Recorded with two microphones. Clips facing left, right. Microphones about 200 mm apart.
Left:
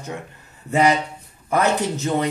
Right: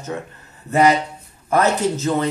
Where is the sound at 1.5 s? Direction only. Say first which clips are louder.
Right 2 dB; 15° left (ahead or behind).